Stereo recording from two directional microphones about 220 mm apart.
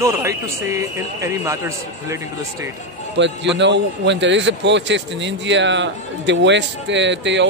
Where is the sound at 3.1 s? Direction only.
55° right (ahead or behind).